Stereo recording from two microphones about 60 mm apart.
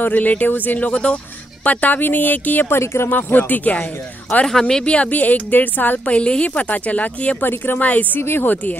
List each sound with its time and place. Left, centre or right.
0.0 s a woman's voice: left
2.7 s speech: left
3.1 s a woman's voice: left
4.5 s a woman's voice: centre
7.4 s a woman's voice: left
8.2 s speech: left